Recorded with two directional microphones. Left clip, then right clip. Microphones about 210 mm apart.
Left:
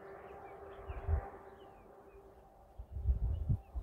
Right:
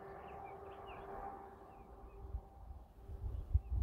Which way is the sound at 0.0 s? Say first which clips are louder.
Even; 45° left (ahead or behind).